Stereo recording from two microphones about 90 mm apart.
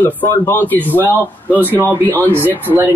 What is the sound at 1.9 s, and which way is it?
Speech, 25° right (ahead or behind).